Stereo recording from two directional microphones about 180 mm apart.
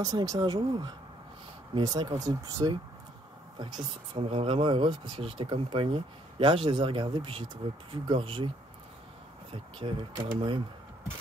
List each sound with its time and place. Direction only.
0.0 s speech: 20° right (ahead or behind)
9.5 s speech: 30° right (ahead or behind)